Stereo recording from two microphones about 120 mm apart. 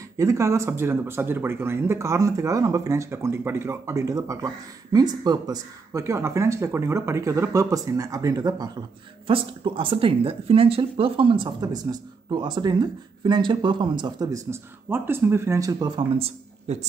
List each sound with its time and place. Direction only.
0.2 s speech: 25° right (ahead or behind)
9.3 s speech: 45° right (ahead or behind); by 16.1 s 30° right (ahead or behind)
16.2 s speech: 60° right (ahead or behind)